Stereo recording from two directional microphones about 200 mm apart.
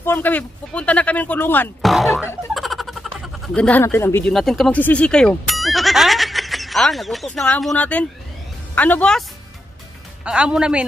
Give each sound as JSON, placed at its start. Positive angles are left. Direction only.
{"t": 0.0, "sound": "speech", "side_deg": 10}
{"t": 2.5, "sound": "a sound", "side_deg": 0}
{"t": 3.5, "sound": "speech", "side_deg": 5}
{"t": 10.2, "sound": "a woman's voice", "side_deg": -5}